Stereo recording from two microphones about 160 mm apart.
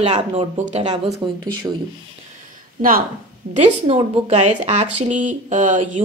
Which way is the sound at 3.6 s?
40° right (ahead or behind).